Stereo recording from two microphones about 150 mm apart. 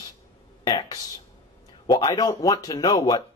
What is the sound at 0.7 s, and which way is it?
Speech, 25° left (ahead or behind).